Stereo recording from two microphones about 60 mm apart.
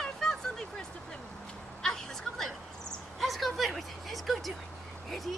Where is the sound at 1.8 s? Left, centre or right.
Centre.